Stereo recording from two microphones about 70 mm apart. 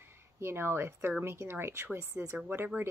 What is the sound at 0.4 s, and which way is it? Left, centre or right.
Speech, right.